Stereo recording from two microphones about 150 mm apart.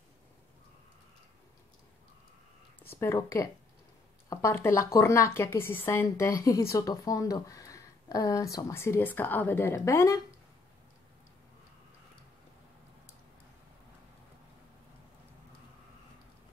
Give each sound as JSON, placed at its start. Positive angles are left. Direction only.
{"t": 2.8, "sound": "a woman's voice", "side_deg": 15}